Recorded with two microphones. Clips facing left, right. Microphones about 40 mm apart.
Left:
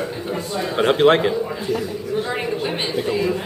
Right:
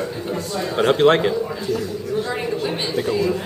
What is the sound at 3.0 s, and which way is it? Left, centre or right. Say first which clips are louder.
Speech: right 1 dB; left.